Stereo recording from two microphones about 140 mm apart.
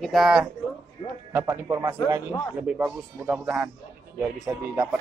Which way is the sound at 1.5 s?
20° right (ahead or behind).